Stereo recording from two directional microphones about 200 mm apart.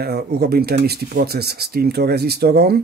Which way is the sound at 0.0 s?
50° right (ahead or behind).